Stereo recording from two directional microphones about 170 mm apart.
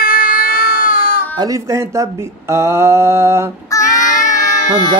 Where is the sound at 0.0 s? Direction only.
60° left (ahead or behind).